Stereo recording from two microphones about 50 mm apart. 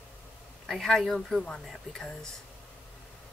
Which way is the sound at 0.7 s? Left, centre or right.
Centre.